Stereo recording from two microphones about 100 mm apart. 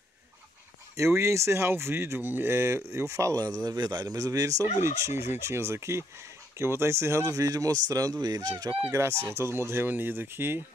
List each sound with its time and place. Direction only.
0.9 s speech: 30° right (ahead or behind)
8.9 s speech: 30° right (ahead or behind)